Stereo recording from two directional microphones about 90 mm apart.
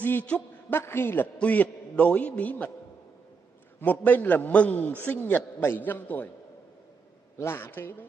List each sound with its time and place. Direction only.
0.0 s a man's voice: 15° left (ahead or behind)
3.8 s a man's voice: 20° left (ahead or behind)
7.3 s a man's voice: 25° left (ahead or behind)